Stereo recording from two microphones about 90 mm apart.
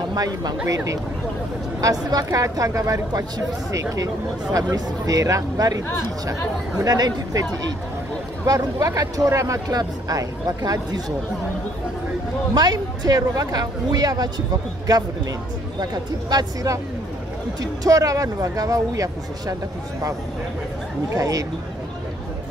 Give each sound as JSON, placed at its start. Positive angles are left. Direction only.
{"t": 0.1, "sound": "speech", "side_deg": -45}
{"t": 0.7, "sound": "speech", "side_deg": -35}
{"t": 6.8, "sound": "speech", "side_deg": -45}
{"t": 8.5, "sound": "speech", "side_deg": -45}
{"t": 12.5, "sound": "speech", "side_deg": -50}
{"t": 15.8, "sound": "speech", "side_deg": -50}
{"t": 17.8, "sound": "speech", "side_deg": -40}
{"t": 21.1, "sound": "speech", "side_deg": -40}